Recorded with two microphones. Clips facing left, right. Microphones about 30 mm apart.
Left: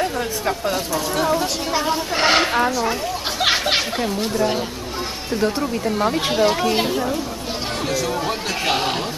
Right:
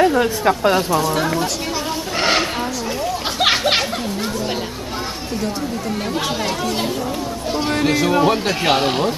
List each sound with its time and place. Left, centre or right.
0.0 s speech: right
1.1 s speech: centre
1.9 s speech: centre
3.3 s speech: centre
6.3 s speech: centre
7.8 s speech: right
8.3 s a man's voice: centre